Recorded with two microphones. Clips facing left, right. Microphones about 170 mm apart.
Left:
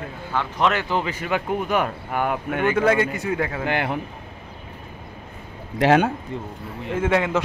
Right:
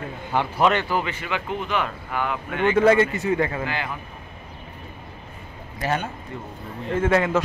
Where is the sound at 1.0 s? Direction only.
40° left (ahead or behind).